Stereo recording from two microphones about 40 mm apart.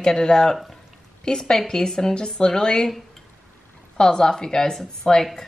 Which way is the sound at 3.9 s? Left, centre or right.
Centre.